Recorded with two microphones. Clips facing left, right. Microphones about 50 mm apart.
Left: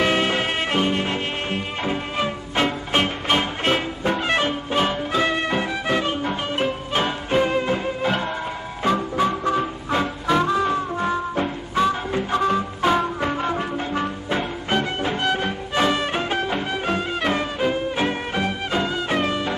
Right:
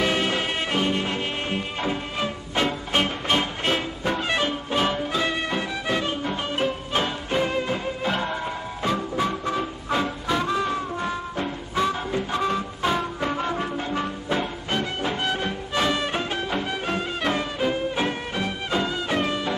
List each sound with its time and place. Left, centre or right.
0.0 s music: left
5.1 s music: left
14.7 s music: left
15.0 s music: centre